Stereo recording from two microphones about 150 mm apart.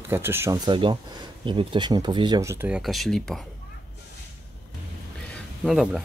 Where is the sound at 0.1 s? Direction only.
15° right (ahead or behind); by 2.4 s 30° right (ahead or behind).